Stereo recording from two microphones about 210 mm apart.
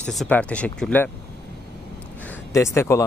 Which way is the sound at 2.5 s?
15° left (ahead or behind).